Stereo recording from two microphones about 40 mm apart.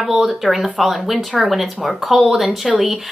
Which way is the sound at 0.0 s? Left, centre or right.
Centre.